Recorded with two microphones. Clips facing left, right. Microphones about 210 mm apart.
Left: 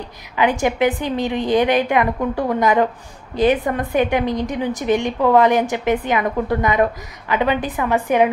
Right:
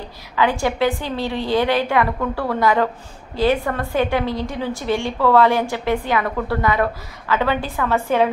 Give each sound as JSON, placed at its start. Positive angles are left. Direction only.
{"t": 0.4, "sound": "a woman's voice", "side_deg": 20}